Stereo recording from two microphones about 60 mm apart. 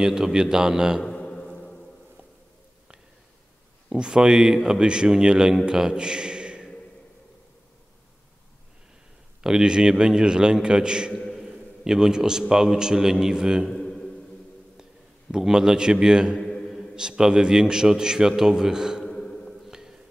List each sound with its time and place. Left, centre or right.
0.0 s a man's voice: centre
1.0 s a sound: centre
3.9 s a man's voice: centre
9.4 s a man's voice: centre
13.7 s a sound: centre
15.3 s a man's voice: centre
16.3 s mantra: centre
16.7 s a man's voice: centre
19.0 s a sound: centre
19.7 s music: centre